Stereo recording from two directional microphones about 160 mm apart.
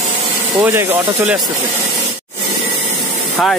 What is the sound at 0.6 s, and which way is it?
Speech, 15° right (ahead or behind).